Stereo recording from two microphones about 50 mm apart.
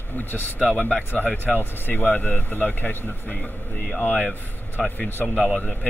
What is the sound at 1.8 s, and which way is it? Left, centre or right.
Speech, left.